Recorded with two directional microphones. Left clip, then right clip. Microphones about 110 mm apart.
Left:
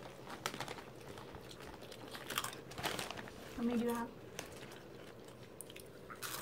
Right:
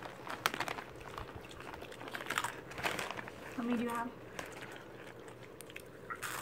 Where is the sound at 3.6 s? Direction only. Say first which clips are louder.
Right 1 dB; 10° left (ahead or behind).